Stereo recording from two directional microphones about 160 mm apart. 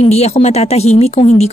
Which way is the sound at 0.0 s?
40° left (ahead or behind).